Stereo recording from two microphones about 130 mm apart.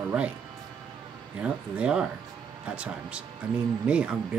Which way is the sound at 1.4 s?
5° right (ahead or behind).